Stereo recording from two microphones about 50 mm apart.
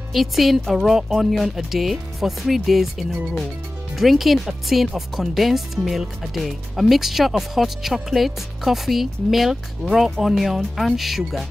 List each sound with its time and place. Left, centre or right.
0.1 s speech: centre